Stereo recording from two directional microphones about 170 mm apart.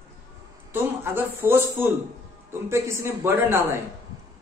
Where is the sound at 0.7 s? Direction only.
15° right (ahead or behind).